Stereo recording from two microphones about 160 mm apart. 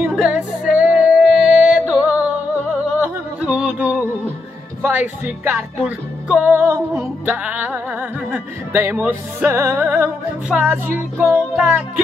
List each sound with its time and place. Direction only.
0.0 s music: 5° right (ahead or behind)
3.0 s a sound: 5° right (ahead or behind)
4.8 s music: 10° right (ahead or behind)